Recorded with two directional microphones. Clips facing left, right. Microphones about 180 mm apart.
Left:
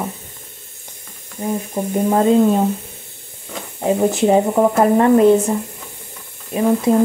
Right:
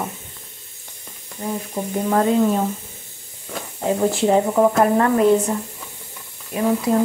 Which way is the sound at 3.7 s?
20° left (ahead or behind).